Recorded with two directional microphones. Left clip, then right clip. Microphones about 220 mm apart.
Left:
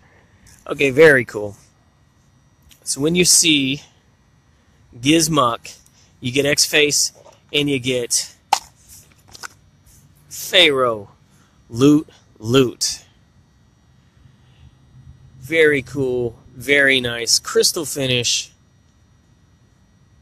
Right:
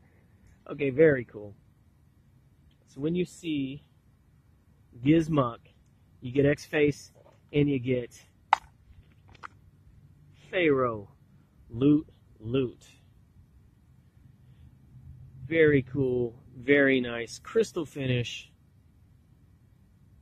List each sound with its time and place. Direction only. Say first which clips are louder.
0.7 s speech: left 11 dB; 15° left (ahead or behind)
2.9 s speech: left 16 dB; 20° left (ahead or behind)
5.0 s speech: left 10 dB; 15° left (ahead or behind)
10.5 s speech: left 12 dB; 15° left (ahead or behind)
15.4 s speech: left 8 dB; 10° left (ahead or behind)